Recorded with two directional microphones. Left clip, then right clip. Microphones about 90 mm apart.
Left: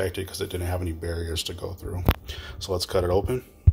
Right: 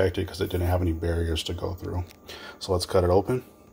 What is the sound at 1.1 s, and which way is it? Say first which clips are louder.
Speech: right 2 dB; 30° right (ahead or behind).